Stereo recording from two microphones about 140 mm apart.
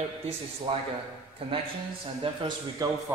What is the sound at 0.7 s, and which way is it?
Speech, 45° right (ahead or behind).